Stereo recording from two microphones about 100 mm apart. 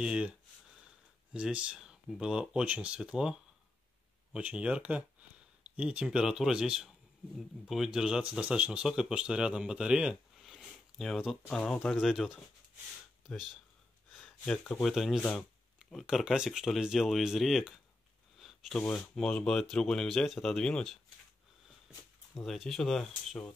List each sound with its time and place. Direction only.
0.0 s speech: 10° right (ahead or behind)
11.5 s speech: 10° left (ahead or behind)
14.1 s a sound: 5° left (ahead or behind)
14.8 s speech: centre (ahead or behind)
22.3 s speech: centre (ahead or behind)